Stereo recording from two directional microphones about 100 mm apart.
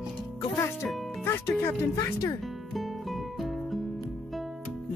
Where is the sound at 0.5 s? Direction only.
25° left (ahead or behind).